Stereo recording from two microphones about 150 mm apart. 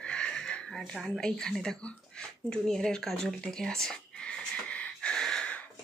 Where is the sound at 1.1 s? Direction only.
5° left (ahead or behind).